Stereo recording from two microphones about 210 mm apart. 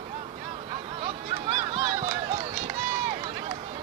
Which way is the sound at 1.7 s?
25° right (ahead or behind).